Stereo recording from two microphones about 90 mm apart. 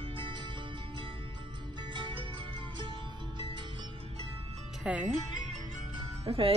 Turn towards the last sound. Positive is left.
turn(degrees=-90)